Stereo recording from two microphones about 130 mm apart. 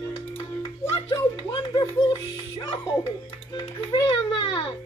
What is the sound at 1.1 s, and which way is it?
Music, 30° left (ahead or behind).